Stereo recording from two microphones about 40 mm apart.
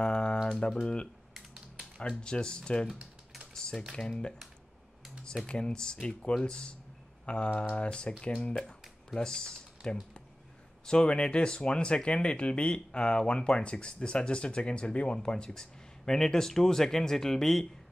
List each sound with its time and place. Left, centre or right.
0.0 s a sound: left
0.6 s speech: left
2.0 s speech: left
2.9 s typing: centre
3.9 s speech: centre
5.5 s speech: left
8.5 s a sound: left
10.9 s speech: left